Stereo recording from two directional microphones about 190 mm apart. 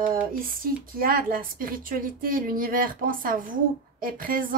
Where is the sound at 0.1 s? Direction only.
45° right (ahead or behind).